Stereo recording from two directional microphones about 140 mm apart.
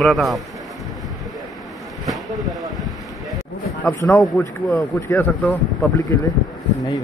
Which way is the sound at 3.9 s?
15° left (ahead or behind).